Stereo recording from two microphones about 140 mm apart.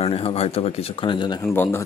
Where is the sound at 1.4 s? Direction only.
15° left (ahead or behind).